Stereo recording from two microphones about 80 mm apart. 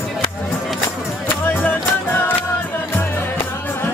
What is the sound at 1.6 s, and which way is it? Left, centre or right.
Music, left.